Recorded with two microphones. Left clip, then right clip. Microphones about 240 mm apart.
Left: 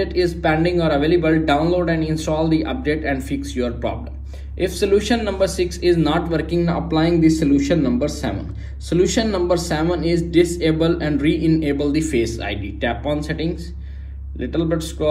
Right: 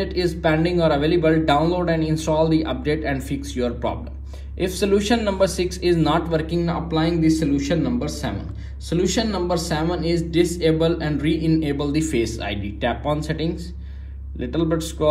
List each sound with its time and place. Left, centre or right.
0.0 s a man's voice: centre